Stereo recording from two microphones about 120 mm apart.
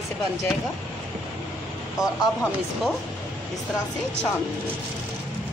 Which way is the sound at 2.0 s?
5° right (ahead or behind).